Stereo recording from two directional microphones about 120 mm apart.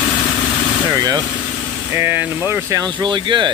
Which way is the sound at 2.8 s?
40° right (ahead or behind).